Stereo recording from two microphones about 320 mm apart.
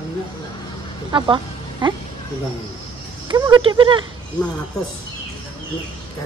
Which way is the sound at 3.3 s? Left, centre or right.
Centre.